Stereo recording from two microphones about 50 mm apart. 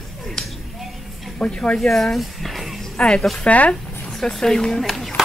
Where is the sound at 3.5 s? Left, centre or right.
Left.